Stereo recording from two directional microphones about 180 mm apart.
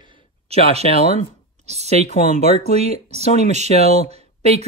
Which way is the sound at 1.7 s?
35° right (ahead or behind).